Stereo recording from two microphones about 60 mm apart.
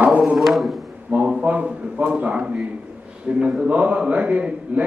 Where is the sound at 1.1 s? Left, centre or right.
Centre.